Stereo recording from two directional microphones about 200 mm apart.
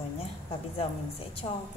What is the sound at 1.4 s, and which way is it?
Speech, 30° left (ahead or behind).